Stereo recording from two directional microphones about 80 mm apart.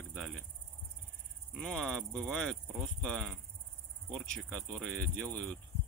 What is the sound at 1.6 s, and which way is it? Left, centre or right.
Speech, centre.